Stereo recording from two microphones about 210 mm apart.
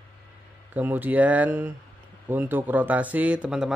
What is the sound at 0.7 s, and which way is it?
Speech, 10° right (ahead or behind).